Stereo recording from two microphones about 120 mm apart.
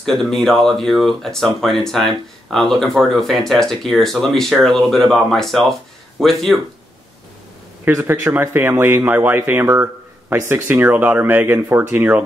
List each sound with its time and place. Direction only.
0.0 s speech: 5° left (ahead or behind)
7.8 s speech: 20° right (ahead or behind)